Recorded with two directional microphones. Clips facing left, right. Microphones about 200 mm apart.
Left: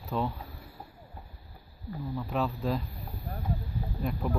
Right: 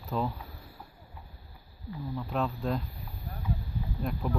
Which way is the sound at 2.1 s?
Centre (ahead or behind).